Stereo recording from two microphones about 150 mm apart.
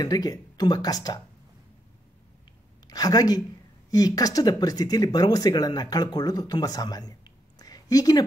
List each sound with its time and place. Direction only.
0.0 s speech: 25° left (ahead or behind)
2.9 s speech: 25° left (ahead or behind)